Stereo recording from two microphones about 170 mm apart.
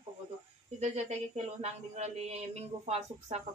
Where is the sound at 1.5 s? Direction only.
40° right (ahead or behind).